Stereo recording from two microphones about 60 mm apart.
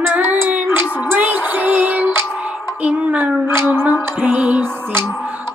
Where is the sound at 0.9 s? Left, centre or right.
Right.